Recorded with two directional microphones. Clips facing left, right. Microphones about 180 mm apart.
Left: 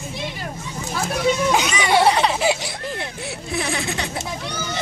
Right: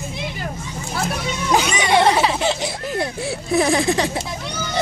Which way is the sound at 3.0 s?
35° right (ahead or behind).